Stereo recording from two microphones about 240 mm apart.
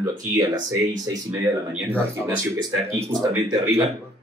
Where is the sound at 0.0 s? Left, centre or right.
Centre.